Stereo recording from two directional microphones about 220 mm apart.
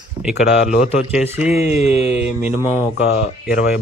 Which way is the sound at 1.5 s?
45° right (ahead or behind).